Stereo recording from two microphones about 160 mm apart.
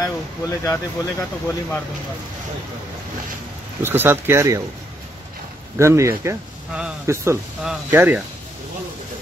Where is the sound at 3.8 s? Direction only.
15° right (ahead or behind).